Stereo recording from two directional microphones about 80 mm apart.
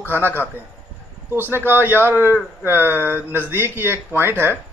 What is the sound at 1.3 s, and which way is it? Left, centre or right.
Speech, right.